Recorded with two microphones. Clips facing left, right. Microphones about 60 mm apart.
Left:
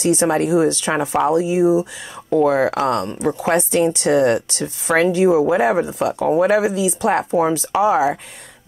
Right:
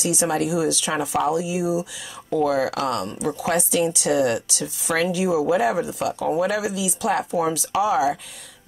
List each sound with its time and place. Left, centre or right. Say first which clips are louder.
0.0 s speech: left 6 dB; left
2.2 s speech: left 6 dB; left
2.5 s speech: left 5 dB; left